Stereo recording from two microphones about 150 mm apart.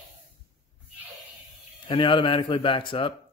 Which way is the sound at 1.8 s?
35° left (ahead or behind).